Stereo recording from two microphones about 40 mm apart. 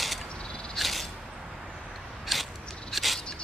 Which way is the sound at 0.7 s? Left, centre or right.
Centre.